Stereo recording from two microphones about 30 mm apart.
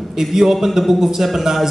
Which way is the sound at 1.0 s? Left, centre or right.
Centre.